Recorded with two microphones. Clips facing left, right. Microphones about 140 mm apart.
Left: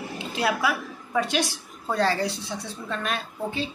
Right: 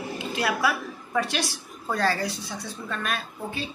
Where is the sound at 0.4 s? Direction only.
15° left (ahead or behind).